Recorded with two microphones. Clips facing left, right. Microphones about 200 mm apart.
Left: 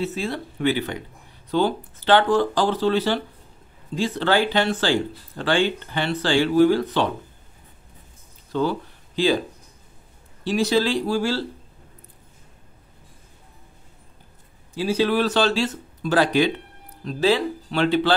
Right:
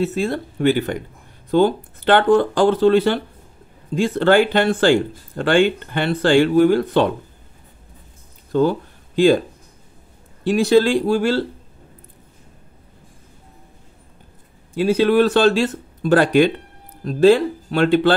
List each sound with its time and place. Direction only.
0.0 s speech: 50° right (ahead or behind)
8.5 s a sound: 50° right (ahead or behind)
10.4 s speech: 55° right (ahead or behind)
14.8 s speech: 55° right (ahead or behind)